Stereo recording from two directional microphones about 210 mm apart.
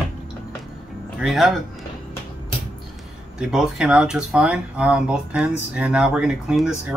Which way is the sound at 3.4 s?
5° right (ahead or behind).